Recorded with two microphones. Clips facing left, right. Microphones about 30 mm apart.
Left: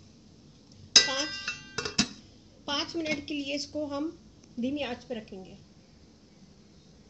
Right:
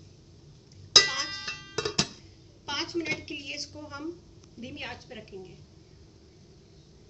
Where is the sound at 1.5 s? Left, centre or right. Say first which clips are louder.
Right 2 dB; right.